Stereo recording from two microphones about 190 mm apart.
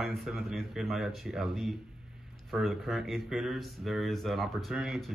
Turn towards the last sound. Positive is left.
turn(degrees=0)  # may be behind; listen again after turning